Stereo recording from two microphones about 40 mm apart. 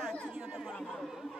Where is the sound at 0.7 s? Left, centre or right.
Centre.